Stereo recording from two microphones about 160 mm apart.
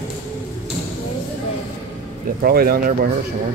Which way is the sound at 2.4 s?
70° right (ahead or behind).